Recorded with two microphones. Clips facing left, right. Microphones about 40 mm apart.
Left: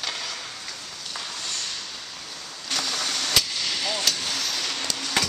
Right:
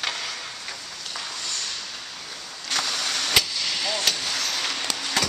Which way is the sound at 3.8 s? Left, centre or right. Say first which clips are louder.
Right 1 dB; centre.